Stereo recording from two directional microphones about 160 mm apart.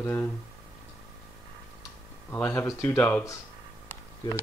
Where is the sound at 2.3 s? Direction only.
15° left (ahead or behind).